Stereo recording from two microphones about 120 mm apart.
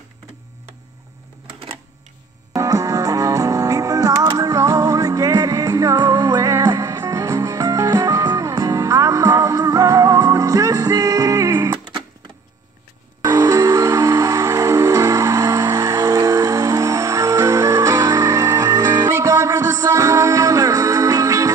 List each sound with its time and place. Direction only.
2.5 s music: 30° right (ahead or behind)
13.2 s music: 30° right (ahead or behind)